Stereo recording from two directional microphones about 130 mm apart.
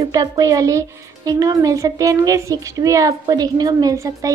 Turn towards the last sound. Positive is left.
turn(degrees=-25)  # may be behind; listen again after turning